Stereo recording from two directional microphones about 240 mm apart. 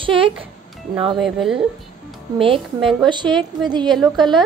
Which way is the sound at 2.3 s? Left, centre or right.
Right.